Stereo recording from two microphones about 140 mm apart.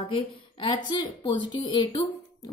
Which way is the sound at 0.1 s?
35° left (ahead or behind).